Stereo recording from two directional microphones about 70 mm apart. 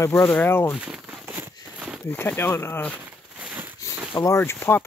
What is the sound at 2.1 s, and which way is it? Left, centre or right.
Speech, left.